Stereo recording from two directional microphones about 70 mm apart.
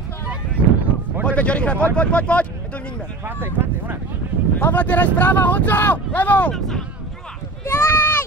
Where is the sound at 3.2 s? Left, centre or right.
Right.